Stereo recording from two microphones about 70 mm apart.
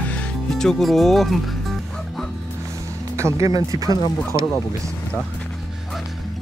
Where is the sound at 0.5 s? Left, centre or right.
Centre.